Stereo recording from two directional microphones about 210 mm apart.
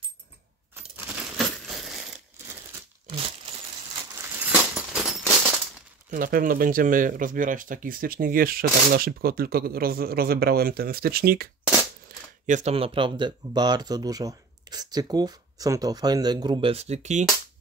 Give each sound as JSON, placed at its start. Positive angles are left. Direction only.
{"t": 1.4, "sound": "coin", "side_deg": 0}
{"t": 3.1, "sound": "crumpling", "side_deg": -25}
{"t": 4.2, "sound": "a sound", "side_deg": -10}
{"t": 6.0, "sound": "speech", "side_deg": -40}
{"t": 12.4, "sound": "speech", "side_deg": -35}